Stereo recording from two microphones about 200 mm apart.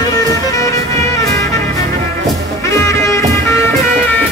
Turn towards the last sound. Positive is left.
turn(degrees=15)  # may be behind; listen again after turning